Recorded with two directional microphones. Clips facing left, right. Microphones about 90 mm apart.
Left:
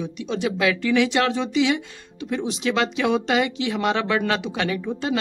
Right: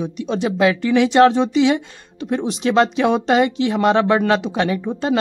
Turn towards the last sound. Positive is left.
turn(degrees=-30)  # may be behind; listen again after turning